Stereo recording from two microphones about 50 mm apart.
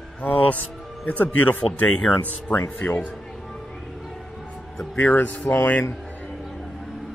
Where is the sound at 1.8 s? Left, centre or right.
Centre.